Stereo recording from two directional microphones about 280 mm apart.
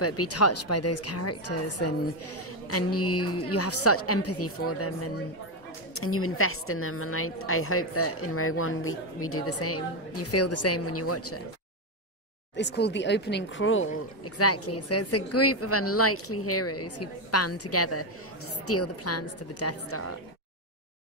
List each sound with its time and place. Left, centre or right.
0.0 s a woman's voice: left
12.5 s a woman's voice: left